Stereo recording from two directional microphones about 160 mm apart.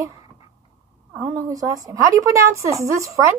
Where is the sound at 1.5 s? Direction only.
25° right (ahead or behind).